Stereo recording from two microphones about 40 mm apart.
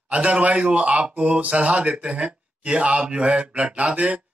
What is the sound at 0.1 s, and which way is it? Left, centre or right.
Speech, right.